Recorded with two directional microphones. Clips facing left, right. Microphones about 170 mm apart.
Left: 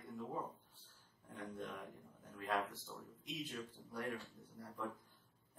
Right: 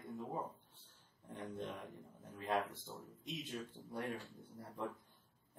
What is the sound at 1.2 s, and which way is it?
A man's voice, 25° right (ahead or behind).